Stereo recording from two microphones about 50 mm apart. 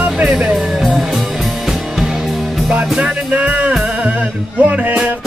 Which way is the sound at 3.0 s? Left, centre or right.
Right.